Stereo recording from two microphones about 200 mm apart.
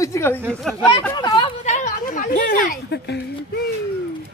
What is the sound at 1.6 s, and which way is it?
Speech, 35° left (ahead or behind).